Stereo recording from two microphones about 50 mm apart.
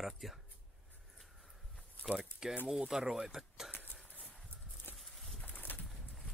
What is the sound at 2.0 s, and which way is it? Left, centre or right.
Speech, centre.